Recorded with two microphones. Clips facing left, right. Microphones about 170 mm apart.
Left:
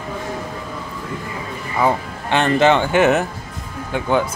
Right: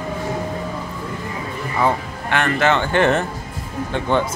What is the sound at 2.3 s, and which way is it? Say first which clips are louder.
Speech: left 4 dB; 20° left (ahead or behind).